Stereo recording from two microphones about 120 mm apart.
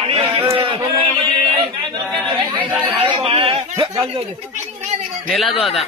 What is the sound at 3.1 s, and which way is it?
Speech, 50° right (ahead or behind).